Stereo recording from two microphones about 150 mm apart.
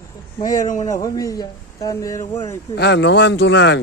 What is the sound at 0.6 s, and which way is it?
Speech, 60° left (ahead or behind).